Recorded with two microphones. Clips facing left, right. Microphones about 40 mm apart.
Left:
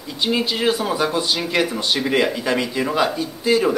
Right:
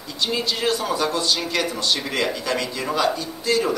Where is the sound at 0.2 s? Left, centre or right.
Centre.